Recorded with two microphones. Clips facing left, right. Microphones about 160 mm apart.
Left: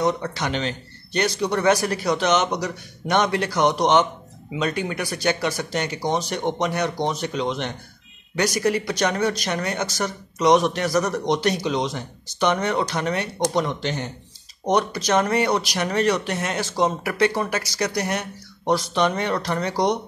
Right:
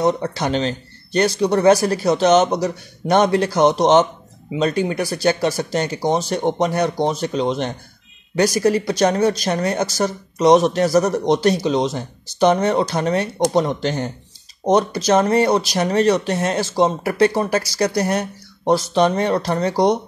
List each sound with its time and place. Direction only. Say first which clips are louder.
0.0 s speech: right 4 dB; 35° right (ahead or behind)
14.7 s speech: right 5 dB; 30° right (ahead or behind)